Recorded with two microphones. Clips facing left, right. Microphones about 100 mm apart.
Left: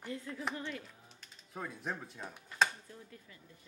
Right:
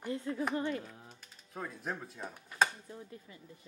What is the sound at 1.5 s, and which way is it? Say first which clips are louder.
Speech: right 1 dB; centre (ahead or behind).